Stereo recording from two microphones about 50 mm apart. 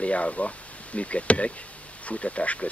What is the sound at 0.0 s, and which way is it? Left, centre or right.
Speech, left.